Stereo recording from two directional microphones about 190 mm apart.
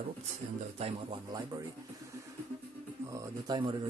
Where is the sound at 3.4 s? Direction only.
25° right (ahead or behind).